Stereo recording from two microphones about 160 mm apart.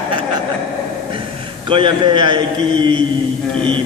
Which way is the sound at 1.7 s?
30° right (ahead or behind).